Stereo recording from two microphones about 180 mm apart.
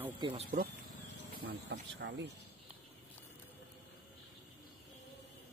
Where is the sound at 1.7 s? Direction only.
75° right (ahead or behind).